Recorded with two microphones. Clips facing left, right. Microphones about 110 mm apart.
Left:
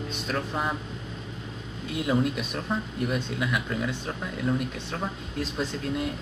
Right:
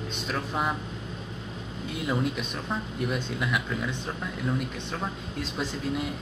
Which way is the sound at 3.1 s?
Centre (ahead or behind).